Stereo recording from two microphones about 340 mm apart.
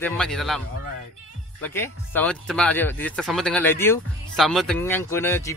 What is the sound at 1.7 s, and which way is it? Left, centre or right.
Speech, centre.